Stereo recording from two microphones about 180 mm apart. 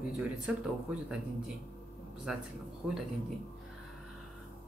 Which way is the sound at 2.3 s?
5° right (ahead or behind).